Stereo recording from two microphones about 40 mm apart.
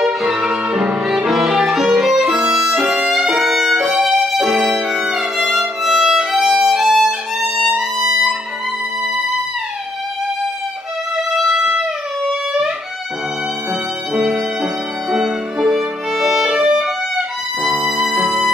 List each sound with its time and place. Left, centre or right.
0.0 s music: centre
2.0 s violin: centre
7.6 s music: centre
11.5 s music: centre
14.1 s music: centre